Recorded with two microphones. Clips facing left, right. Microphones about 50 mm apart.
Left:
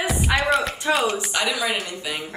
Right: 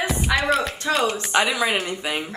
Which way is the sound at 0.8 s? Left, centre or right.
Centre.